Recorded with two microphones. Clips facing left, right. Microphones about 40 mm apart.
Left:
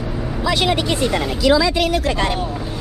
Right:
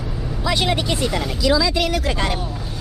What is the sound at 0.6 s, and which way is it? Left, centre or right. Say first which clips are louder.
Speech: left 3 dB; left.